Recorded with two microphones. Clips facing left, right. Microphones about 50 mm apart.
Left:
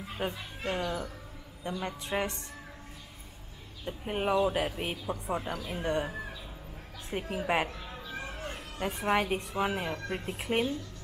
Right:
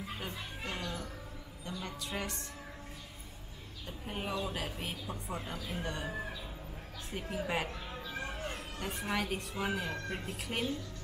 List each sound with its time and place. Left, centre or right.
0.2 s a woman's voice: left
3.8 s a woman's voice: left
7.1 s a woman's voice: left
7.9 s a sound: centre
9.0 s a woman's voice: left